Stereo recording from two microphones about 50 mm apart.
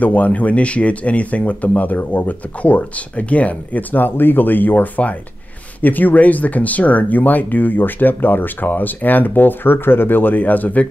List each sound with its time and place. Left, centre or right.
0.0 s speech: left